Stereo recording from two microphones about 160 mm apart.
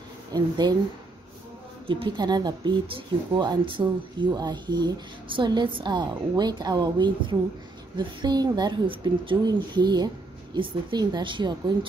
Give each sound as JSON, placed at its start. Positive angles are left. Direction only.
{"t": 0.3, "sound": "speech", "side_deg": -25}
{"t": 1.9, "sound": "speech", "side_deg": -30}